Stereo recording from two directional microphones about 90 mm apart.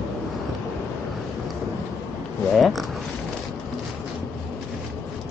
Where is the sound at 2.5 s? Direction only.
Centre (ahead or behind).